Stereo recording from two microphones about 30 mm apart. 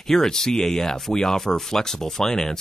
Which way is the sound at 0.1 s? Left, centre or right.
Centre.